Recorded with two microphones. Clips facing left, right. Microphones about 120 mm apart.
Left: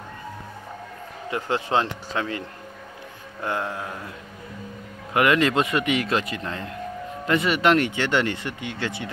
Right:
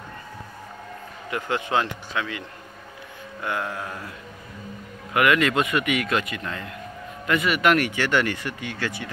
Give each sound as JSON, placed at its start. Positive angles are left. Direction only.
{"t": 1.3, "sound": "speech", "side_deg": 30}
{"t": 5.1, "sound": "speech", "side_deg": 30}